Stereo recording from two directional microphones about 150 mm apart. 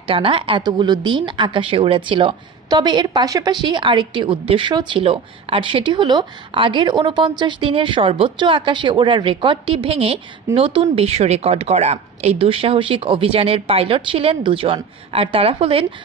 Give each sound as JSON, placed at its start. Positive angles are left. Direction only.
{"t": 0.0, "sound": "speech", "side_deg": -40}